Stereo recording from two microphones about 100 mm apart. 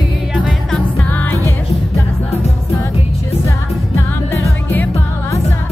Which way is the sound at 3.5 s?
25° left (ahead or behind).